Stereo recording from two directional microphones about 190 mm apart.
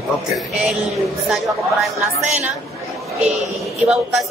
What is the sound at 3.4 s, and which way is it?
Speech, centre (ahead or behind).